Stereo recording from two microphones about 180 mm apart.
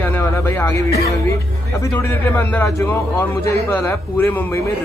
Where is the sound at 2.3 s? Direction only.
15° left (ahead or behind).